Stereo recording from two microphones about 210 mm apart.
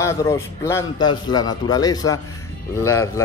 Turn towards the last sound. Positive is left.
turn(degrees=15)  # may be behind; listen again after turning